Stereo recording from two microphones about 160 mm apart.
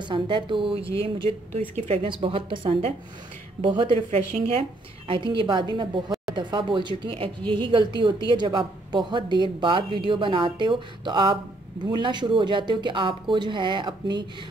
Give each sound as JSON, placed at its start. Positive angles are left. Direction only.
{"t": 0.0, "sound": "a woman's voice", "side_deg": -30}